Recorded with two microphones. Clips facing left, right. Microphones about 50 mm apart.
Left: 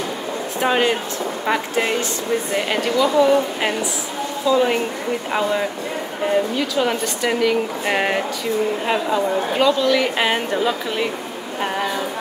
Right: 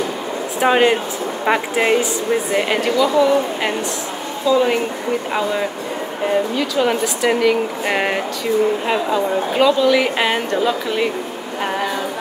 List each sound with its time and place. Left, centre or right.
0.6 s speech: centre
2.5 s speech: centre
3.0 s a woman's voice: centre
11.6 s a sound: centre